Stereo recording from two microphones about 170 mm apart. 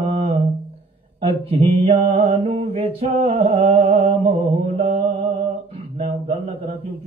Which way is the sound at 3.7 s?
45° right (ahead or behind).